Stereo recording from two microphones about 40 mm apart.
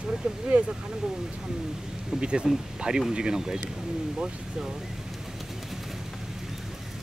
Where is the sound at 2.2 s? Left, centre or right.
Right.